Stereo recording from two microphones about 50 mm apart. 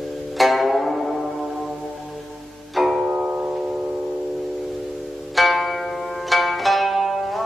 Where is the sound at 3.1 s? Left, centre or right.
Right.